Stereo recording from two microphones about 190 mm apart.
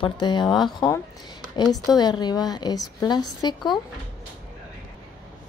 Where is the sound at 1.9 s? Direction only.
20° left (ahead or behind).